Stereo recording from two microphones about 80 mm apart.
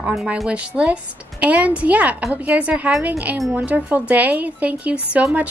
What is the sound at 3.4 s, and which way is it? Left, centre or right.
Speech, centre.